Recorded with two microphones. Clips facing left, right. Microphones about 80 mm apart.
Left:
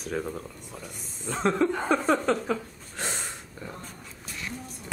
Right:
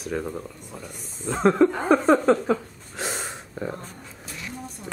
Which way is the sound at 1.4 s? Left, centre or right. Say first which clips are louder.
Right 6 dB; centre.